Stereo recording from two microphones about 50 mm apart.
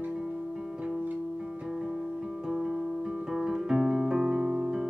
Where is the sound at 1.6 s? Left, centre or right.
Centre.